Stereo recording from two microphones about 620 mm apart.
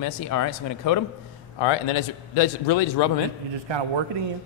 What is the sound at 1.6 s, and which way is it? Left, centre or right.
A man's voice, left.